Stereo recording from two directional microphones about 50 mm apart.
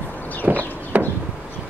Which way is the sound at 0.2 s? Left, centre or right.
Left.